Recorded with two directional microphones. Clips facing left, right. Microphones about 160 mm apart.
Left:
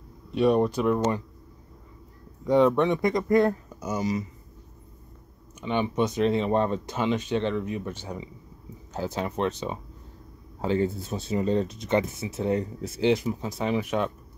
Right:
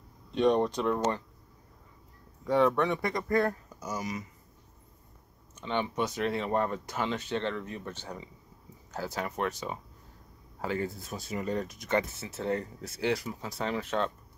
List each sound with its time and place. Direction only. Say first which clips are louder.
0.3 s speech: left 3 dB; 5° left (ahead or behind)
2.4 s speech: left 5 dB; 20° left (ahead or behind)
5.6 s speech: left 5 dB; 15° left (ahead or behind)